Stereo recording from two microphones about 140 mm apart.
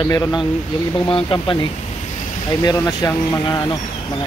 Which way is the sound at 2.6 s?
25° left (ahead or behind).